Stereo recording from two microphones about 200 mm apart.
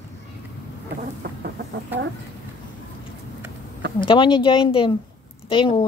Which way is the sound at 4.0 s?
25° left (ahead or behind).